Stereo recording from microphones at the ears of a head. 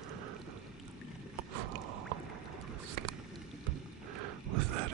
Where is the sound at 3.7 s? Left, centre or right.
Right.